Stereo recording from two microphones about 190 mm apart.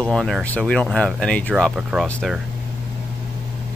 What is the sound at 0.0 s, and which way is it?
Speech, centre (ahead or behind).